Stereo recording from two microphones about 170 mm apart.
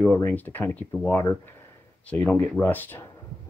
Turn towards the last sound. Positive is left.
turn(degrees=10)  # may be behind; listen again after turning